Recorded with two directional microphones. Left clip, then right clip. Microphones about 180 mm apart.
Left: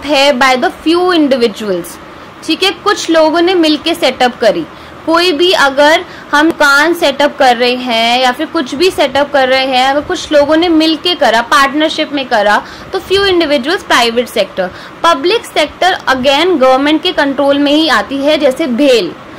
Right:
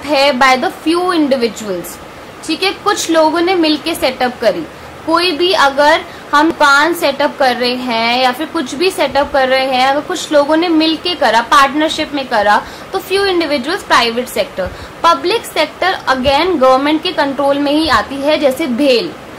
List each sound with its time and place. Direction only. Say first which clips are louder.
0.0 s a woman's voice: left 2 dB; 15° left (ahead or behind)